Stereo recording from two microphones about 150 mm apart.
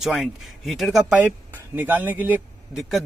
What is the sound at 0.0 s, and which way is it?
Speech, centre (ahead or behind).